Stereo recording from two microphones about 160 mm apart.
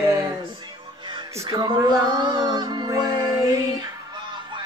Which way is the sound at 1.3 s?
20° right (ahead or behind).